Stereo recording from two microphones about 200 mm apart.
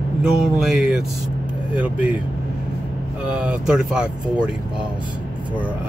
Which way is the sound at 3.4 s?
5° right (ahead or behind).